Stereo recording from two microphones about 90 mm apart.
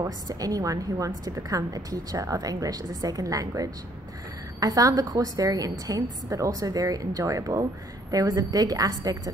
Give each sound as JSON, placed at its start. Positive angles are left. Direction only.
{"t": 0.0, "sound": "a woman's voice", "side_deg": -40}